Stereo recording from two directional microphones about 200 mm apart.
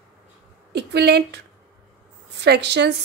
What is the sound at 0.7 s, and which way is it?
Speech, 55° right (ahead or behind).